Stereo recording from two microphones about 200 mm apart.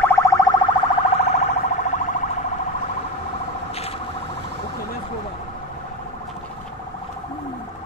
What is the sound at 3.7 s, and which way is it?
Car alarm, 30° left (ahead or behind).